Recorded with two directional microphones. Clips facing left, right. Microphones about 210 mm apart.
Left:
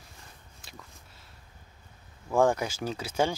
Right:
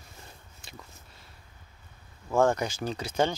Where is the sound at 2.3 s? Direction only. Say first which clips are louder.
Even; 15° left (ahead or behind).